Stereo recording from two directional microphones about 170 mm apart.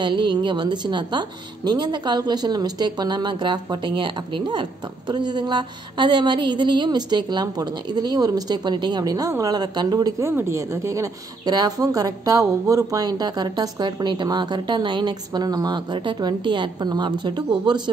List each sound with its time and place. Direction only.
0.0 s a woman's voice: 25° right (ahead or behind)